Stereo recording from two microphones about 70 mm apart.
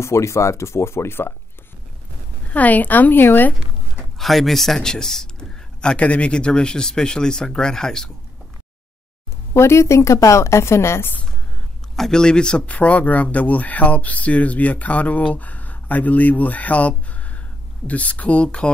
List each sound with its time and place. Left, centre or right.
0.0 s a woman's voice: left
2.5 s speech: left
4.2 s a man's voice: centre
9.5 s a woman's voice: left
11.9 s speech: centre